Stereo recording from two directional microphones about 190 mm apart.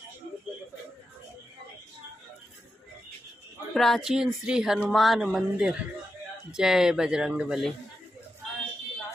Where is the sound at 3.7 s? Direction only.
Centre (ahead or behind).